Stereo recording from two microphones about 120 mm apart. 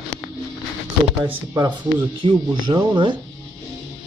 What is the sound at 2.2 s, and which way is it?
Speech, 40° right (ahead or behind).